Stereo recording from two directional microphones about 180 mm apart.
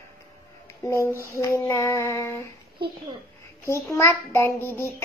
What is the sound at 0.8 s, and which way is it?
A child's voice, 15° left (ahead or behind).